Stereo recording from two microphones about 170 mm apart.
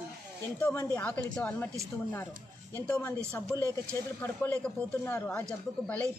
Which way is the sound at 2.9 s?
10° left (ahead or behind).